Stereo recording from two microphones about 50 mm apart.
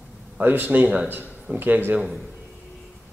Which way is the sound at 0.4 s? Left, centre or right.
Right.